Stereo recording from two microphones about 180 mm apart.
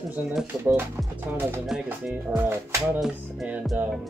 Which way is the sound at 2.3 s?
15° right (ahead or behind).